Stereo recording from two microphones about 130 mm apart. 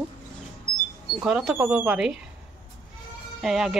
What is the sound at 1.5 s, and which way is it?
Speech, 15° right (ahead or behind).